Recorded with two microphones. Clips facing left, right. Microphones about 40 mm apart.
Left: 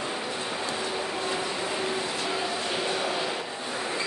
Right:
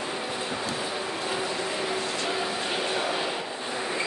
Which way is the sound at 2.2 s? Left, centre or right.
Centre.